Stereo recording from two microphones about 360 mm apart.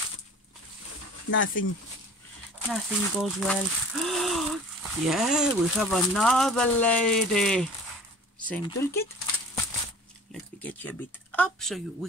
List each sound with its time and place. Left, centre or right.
1.3 s speech: left
2.7 s speech: centre
10.6 s speech: centre